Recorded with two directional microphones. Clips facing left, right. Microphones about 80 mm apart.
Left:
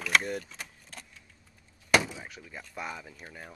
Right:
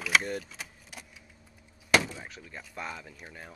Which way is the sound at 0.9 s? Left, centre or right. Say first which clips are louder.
Right 1 dB; centre.